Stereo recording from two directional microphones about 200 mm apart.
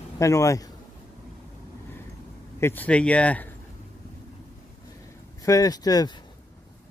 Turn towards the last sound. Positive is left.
turn(degrees=20)  # may be behind; listen again after turning